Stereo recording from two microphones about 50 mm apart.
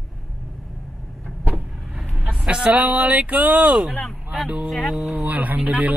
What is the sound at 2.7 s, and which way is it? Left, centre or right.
Speech, right.